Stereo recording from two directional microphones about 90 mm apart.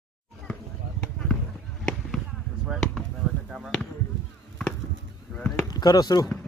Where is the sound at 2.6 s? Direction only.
10° right (ahead or behind).